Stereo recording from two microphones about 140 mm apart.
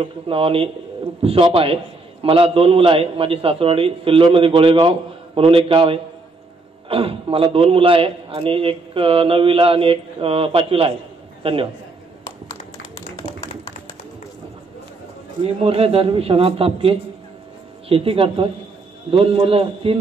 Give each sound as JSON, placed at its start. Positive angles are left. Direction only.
{"t": 0.0, "sound": "a man's voice", "side_deg": -40}
{"t": 13.2, "sound": "tap", "side_deg": -35}
{"t": 15.4, "sound": "a man's voice", "side_deg": -45}